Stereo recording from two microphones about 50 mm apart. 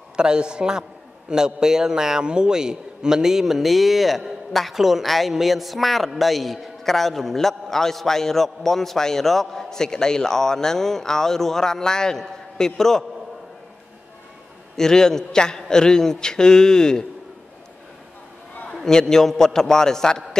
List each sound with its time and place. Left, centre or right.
0.1 s a woman's voice: centre
14.8 s a man's voice: centre
18.7 s a man's voice: centre